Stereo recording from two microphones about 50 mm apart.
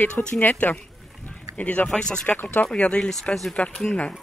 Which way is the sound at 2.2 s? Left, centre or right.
Left.